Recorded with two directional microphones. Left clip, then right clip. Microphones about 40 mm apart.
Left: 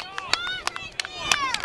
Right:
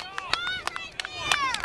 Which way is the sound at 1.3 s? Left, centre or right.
Left.